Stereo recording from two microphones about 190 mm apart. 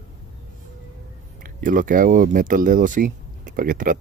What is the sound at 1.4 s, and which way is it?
Speech, 45° right (ahead or behind).